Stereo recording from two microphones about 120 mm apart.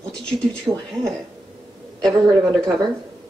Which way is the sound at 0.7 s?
25° right (ahead or behind).